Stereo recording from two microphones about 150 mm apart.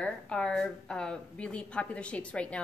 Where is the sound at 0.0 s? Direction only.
5° left (ahead or behind).